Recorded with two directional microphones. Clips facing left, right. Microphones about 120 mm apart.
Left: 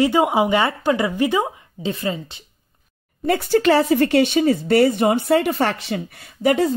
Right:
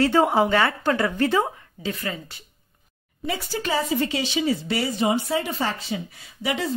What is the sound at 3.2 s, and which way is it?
Speech, 60° left (ahead or behind).